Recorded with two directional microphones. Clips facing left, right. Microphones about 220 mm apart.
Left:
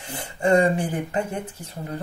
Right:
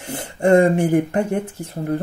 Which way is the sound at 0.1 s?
50° right (ahead or behind).